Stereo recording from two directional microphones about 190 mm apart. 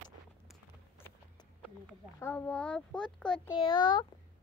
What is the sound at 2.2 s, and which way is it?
Speech, 10° left (ahead or behind).